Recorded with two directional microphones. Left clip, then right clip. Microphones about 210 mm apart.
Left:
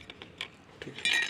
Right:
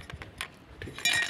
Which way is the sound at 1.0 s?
25° right (ahead or behind).